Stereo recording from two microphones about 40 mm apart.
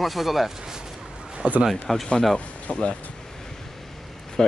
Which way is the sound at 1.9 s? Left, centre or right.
Centre.